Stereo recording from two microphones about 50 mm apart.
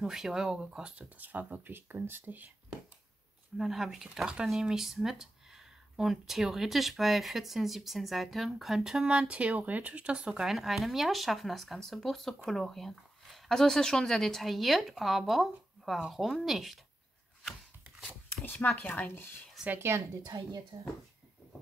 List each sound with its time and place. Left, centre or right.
0.0 s speech: centre
1.1 s speech: right
3.5 s speech: centre; by 10.4 s right
10.4 s speech: centre
18.4 s speech: left
19.8 s a woman's voice: right